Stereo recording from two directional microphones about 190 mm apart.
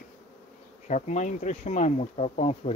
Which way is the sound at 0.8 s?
40° left (ahead or behind).